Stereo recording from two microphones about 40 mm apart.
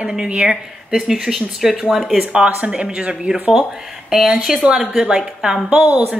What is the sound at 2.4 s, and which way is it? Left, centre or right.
Speech, right.